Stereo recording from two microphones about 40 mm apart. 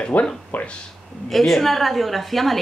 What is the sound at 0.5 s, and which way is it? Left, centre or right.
Speech, left.